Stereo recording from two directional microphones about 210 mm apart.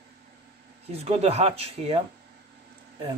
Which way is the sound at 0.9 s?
30° right (ahead or behind).